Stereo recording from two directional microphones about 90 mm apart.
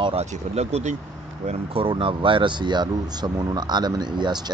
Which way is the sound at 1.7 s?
80° right.